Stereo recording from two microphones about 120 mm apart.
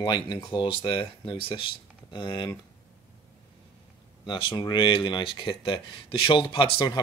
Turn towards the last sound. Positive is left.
turn(degrees=45)  # may be behind; listen again after turning